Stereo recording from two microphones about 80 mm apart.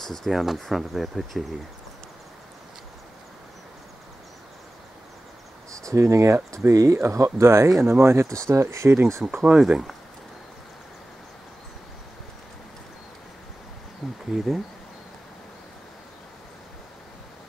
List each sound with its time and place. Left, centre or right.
0.0 s speech: centre
5.9 s speech: right
9.2 s speech: centre
14.0 s speech: centre